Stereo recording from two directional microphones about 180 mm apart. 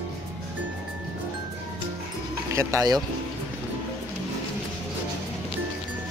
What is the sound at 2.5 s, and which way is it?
Speech, 15° right (ahead or behind).